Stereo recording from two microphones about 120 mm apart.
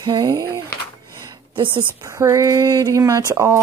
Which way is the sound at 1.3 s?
45° right (ahead or behind).